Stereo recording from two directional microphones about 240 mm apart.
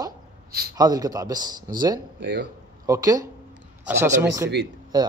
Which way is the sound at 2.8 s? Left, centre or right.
Centre.